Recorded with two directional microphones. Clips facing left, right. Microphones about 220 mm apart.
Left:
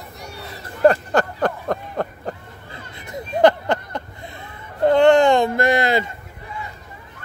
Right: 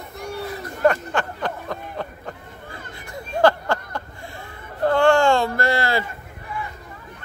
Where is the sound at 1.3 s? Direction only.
50° left (ahead or behind).